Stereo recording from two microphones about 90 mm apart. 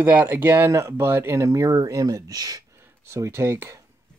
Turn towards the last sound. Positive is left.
turn(degrees=-30)  # may be behind; listen again after turning